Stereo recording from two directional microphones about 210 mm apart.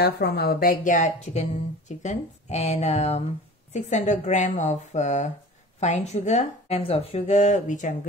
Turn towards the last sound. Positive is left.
turn(degrees=35)  # may be behind; listen again after turning